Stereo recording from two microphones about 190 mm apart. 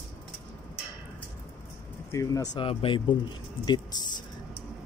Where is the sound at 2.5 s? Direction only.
30° left (ahead or behind).